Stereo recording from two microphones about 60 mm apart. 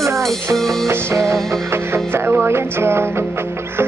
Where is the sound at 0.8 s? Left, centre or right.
Right.